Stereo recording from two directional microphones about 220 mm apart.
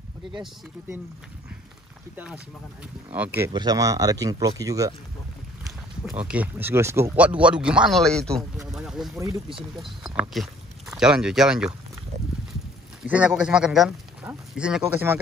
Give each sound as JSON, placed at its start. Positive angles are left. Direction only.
{"t": 2.1, "sound": "speech", "side_deg": -5}
{"t": 6.0, "sound": "speech", "side_deg": -5}
{"t": 9.2, "sound": "speech", "side_deg": -25}
{"t": 9.8, "sound": "speech", "side_deg": 0}
{"t": 13.0, "sound": "speech", "side_deg": -5}